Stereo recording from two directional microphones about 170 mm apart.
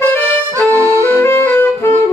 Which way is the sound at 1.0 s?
15° left (ahead or behind).